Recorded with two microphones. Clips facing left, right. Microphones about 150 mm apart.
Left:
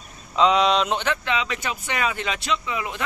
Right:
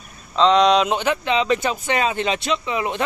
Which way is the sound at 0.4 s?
5° left (ahead or behind).